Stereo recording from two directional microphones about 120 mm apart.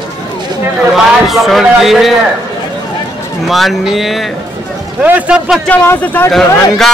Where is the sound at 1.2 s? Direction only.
Centre (ahead or behind).